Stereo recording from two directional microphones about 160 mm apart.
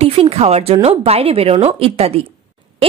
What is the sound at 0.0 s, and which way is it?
A woman's voice, 40° right (ahead or behind).